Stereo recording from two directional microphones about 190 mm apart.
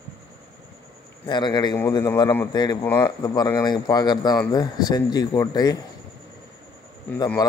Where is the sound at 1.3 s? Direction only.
25° left (ahead or behind).